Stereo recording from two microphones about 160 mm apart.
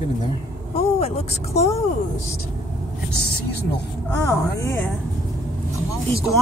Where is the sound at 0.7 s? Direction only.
40° left (ahead or behind).